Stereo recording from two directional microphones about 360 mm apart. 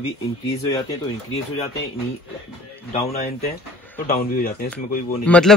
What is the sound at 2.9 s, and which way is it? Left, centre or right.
Speech, centre.